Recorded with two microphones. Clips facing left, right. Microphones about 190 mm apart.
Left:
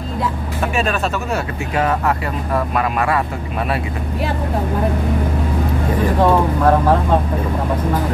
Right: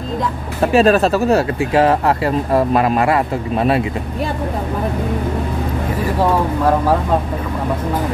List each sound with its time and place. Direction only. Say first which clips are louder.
0.6 s speech: right 9 dB; 35° right (ahead or behind)